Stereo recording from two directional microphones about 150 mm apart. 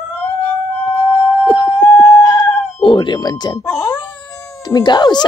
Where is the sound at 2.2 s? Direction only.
25° left (ahead or behind).